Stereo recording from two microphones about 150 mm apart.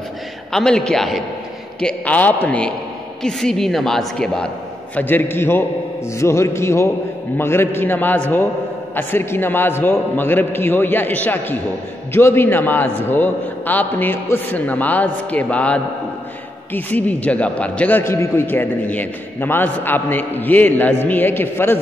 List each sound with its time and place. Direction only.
0.5 s a woman's voice: 5° left (ahead or behind)